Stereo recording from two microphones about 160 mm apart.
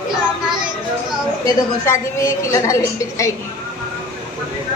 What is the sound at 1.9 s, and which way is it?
A woman's voice, 20° left (ahead or behind).